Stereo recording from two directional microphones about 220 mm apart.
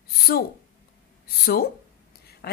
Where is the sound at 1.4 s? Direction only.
45° left (ahead or behind).